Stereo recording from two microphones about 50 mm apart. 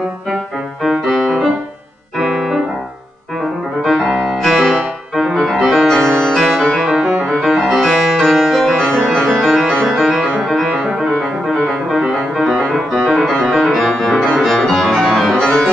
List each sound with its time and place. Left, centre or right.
0.8 s music: centre
2.1 s piano: centre
4.1 s music: centre
5.3 s music: centre
5.6 s music: centre
5.9 s music: centre
6.3 s music: centre
9.4 s music: centre
11.9 s music: centre
15.4 s music: centre